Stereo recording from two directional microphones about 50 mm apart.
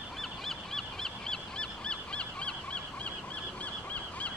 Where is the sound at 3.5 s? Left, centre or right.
Left.